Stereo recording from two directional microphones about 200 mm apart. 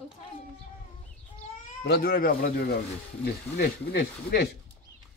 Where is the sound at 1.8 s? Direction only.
50° left (ahead or behind).